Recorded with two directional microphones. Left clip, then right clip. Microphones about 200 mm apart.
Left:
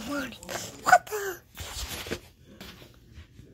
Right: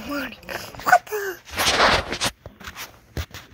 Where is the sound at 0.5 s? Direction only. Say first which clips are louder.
Right 3 dB; 15° right (ahead or behind).